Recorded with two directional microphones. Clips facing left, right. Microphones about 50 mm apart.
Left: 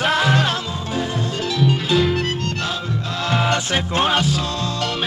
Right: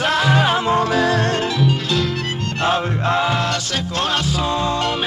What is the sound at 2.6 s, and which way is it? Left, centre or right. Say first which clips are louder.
Music: right 6 dB; right.